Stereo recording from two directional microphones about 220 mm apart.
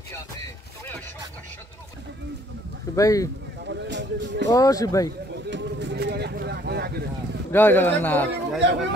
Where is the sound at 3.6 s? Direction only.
55° right (ahead or behind).